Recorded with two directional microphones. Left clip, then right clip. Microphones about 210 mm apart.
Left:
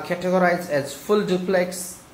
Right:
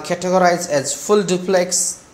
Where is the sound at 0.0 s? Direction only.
15° right (ahead or behind).